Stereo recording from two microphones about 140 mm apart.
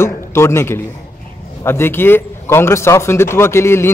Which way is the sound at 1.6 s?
15° left (ahead or behind).